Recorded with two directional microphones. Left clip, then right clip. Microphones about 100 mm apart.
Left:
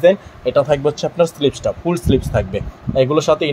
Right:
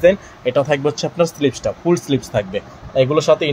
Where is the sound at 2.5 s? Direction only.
20° left (ahead or behind).